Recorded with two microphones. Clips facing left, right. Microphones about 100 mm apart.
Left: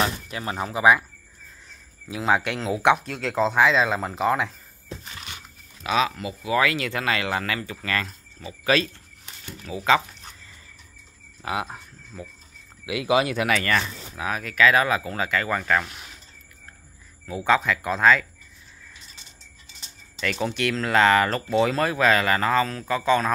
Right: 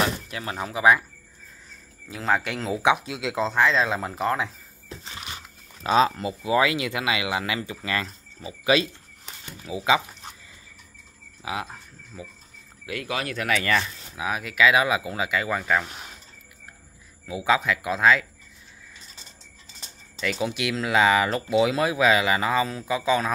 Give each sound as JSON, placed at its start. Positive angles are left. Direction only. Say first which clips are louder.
{"t": 0.0, "sound": "speech", "louder": "even", "side_deg": 5}
{"t": 2.0, "sound": "speech", "louder": "left 2 dB", "side_deg": 5}
{"t": 3.4, "sound": "speech", "louder": "left 2 dB", "side_deg": 5}
{"t": 5.9, "sound": "speech", "louder": "right 3 dB", "side_deg": -30}
{"t": 9.7, "sound": "a sound", "louder": "left 1 dB", "side_deg": -15}
{"t": 11.4, "sound": "speech", "louder": "left 3 dB", "side_deg": -5}
{"t": 12.8, "sound": "speech", "louder": "left 8 dB", "side_deg": 10}
{"t": 13.6, "sound": "speech", "louder": "even", "side_deg": -5}
{"t": 17.3, "sound": "speech", "louder": "left 1 dB", "side_deg": -5}
{"t": 20.2, "sound": "speech", "louder": "left 1 dB", "side_deg": -5}